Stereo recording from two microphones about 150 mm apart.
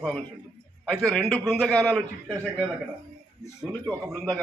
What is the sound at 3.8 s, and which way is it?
Speech, 5° left (ahead or behind).